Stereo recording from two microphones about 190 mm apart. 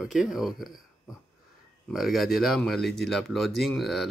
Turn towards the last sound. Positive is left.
turn(degrees=0)  # may be behind; listen again after turning